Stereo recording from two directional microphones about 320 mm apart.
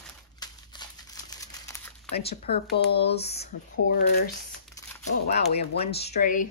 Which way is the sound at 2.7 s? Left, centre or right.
Left.